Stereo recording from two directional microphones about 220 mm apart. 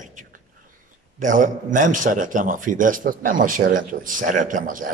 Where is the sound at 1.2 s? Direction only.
35° right (ahead or behind).